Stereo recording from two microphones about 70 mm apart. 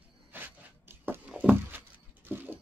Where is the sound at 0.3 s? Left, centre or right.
Right.